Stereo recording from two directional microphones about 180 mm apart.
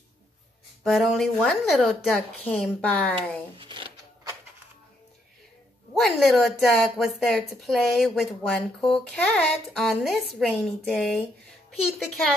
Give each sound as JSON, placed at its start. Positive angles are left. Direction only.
{"t": 0.8, "sound": "speech", "side_deg": 0}
{"t": 3.5, "sound": "a sound", "side_deg": -25}
{"t": 5.9, "sound": "speech", "side_deg": 0}